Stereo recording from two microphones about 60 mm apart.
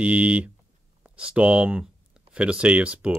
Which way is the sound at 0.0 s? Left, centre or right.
Right.